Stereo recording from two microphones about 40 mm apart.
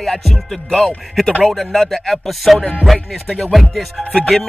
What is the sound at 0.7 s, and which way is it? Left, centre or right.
Music, centre.